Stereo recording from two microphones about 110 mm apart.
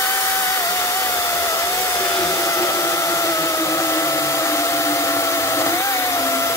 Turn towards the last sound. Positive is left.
turn(degrees=25)  # may be behind; listen again after turning